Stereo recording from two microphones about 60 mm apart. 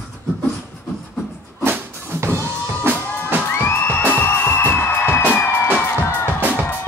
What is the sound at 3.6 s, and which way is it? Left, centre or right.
Music, left.